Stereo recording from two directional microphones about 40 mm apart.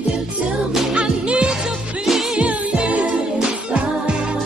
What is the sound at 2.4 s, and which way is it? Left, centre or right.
Music, right.